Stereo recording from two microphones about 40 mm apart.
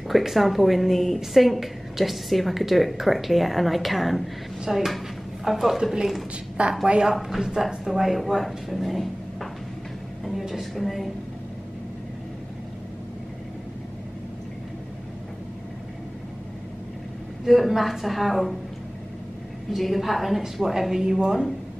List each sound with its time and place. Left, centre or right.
0.1 s a woman's voice: centre
6.9 s speech: centre
7.2 s a woman's voice: centre
10.4 s music: centre
17.5 s a woman's voice: centre
19.7 s a woman's voice: centre